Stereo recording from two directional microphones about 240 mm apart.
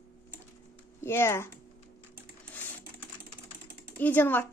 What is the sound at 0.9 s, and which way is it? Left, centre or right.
Speech, centre.